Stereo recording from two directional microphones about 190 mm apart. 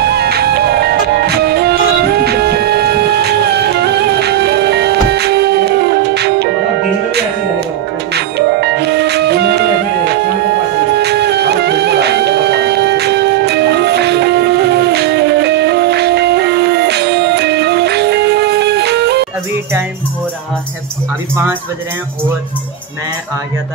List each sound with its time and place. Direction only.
0.0 s music: 55° right (ahead or behind)
8.1 s music: 60° right (ahead or behind)